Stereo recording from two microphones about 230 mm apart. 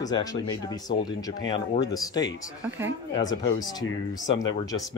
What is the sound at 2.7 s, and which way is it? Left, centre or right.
Speech, centre.